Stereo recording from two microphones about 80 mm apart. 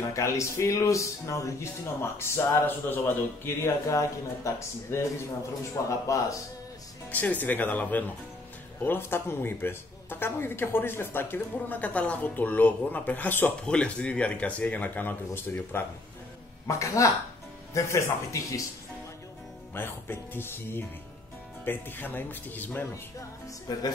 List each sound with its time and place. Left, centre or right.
0.1 s a man's voice: left
7.1 s speech: left
13.7 s speech: centre
16.6 s speech: left
19.7 s speech: left
23.7 s a man's voice: left